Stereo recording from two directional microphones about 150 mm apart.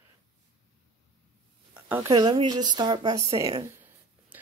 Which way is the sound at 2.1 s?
30° right (ahead or behind).